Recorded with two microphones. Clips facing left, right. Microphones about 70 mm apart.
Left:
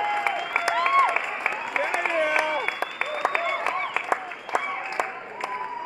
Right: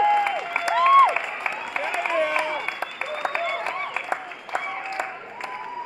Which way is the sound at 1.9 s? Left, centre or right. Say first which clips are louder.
Right 1 dB; left.